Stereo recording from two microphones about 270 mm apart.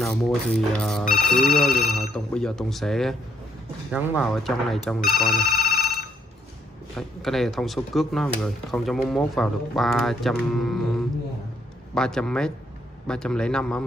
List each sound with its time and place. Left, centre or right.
0.0 s speech: centre
5.3 s telephone bell ringing: left
7.0 s speech: centre